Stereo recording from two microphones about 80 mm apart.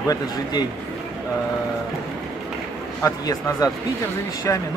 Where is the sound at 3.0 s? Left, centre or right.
Left.